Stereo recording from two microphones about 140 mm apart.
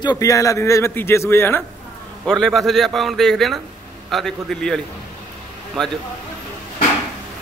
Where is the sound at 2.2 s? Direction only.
Centre (ahead or behind).